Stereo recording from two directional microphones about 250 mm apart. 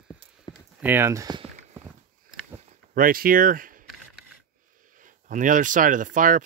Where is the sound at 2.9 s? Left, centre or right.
Right.